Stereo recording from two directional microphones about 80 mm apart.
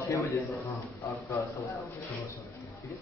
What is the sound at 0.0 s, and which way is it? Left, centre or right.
Speech, left.